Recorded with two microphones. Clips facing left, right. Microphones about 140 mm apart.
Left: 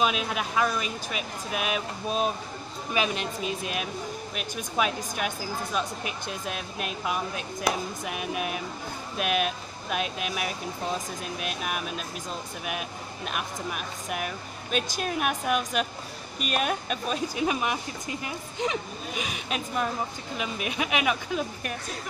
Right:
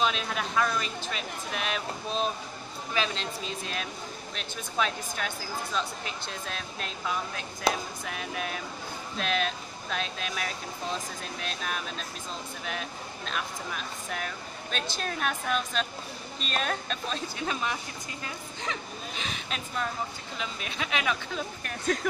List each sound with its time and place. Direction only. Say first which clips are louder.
0.0 s speech: left 2 dB; 10° left (ahead or behind)